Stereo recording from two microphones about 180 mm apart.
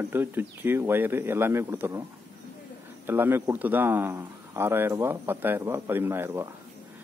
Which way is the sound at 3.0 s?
10° right (ahead or behind).